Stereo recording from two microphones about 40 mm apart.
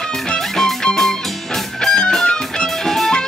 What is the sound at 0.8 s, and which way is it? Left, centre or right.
Music, centre.